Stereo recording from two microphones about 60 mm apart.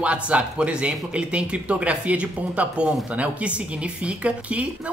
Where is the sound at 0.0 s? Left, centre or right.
Right.